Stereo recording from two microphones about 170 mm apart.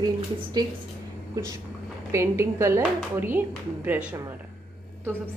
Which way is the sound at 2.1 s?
15° right (ahead or behind).